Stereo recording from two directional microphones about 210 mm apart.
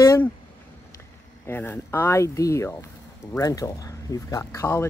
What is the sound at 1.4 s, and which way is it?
Speech, 10° left (ahead or behind).